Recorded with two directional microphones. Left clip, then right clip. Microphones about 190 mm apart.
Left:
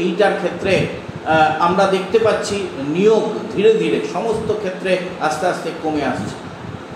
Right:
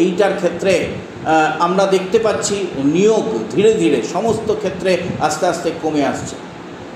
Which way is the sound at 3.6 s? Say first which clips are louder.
Right 1 dB; 45° right (ahead or behind).